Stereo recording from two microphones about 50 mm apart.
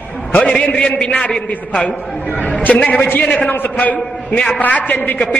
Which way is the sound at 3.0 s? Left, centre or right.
Left.